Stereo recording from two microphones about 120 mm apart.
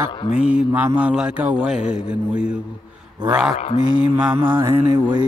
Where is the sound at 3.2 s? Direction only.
40° right (ahead or behind).